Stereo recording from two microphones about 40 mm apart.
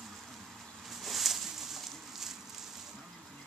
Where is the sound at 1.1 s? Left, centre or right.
Centre.